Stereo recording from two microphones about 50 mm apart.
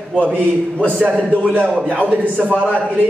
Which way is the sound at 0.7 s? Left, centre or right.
Right.